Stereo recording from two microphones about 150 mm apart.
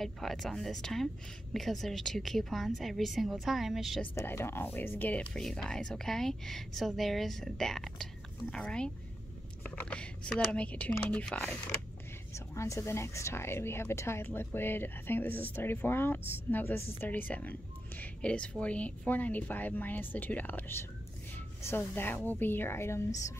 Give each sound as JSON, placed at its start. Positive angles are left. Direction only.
{"t": 0.0, "sound": "speech", "side_deg": 0}
{"t": 4.0, "sound": "speech", "side_deg": 15}